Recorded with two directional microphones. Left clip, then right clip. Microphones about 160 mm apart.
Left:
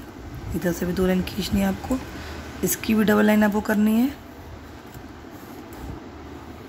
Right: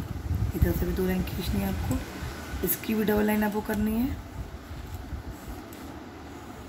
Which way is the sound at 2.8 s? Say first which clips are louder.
Left 6 dB; 30° left (ahead or behind).